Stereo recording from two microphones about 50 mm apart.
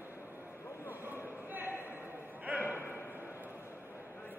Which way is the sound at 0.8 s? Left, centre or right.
Right.